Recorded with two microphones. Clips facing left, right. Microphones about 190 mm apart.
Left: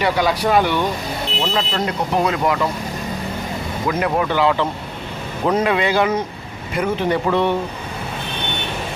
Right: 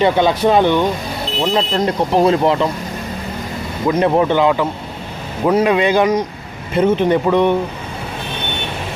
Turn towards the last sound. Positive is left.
turn(degrees=-15)  # may be behind; listen again after turning